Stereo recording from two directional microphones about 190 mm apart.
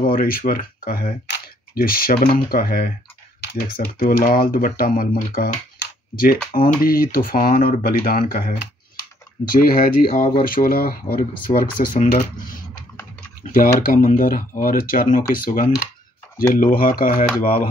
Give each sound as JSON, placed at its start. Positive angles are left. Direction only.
{"t": 0.0, "sound": "speech", "side_deg": 50}
{"t": 11.5, "sound": "speech", "side_deg": 35}